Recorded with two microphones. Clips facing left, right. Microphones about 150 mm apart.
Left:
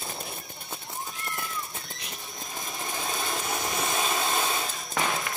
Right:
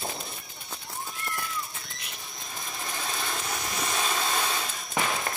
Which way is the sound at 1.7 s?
35° left (ahead or behind).